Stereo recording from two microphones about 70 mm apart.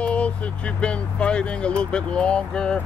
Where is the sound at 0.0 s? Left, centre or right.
Centre.